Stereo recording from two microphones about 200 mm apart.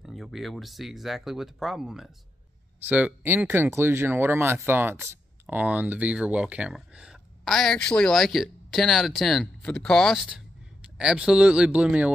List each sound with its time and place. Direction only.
0.0 s speech: centre (ahead or behind)